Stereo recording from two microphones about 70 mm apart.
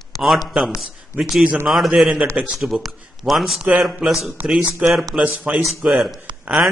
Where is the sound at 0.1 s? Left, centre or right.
Left.